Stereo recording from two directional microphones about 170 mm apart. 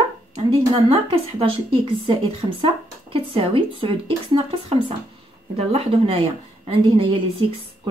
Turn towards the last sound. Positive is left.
turn(degrees=-35)  # may be behind; listen again after turning